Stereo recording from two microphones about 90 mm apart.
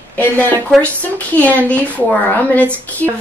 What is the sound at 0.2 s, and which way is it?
Speech, 20° left (ahead or behind).